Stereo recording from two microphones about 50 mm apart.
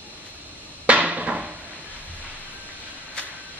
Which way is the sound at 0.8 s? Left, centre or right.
Right.